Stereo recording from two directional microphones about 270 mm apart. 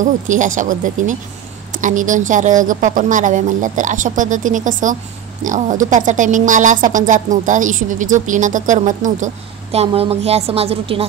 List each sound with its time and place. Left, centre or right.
0.0 s speech: right